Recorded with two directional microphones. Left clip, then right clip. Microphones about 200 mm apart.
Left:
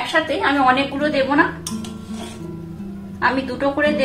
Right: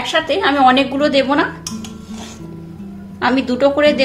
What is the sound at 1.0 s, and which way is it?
Speech, 50° right (ahead or behind).